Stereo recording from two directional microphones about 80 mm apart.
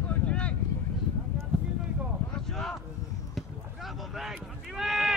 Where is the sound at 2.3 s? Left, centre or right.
Centre.